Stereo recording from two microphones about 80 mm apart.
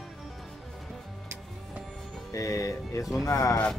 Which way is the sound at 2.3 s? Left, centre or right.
Left.